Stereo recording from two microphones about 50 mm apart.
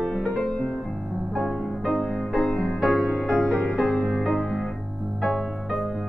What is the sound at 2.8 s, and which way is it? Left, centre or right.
Music, centre.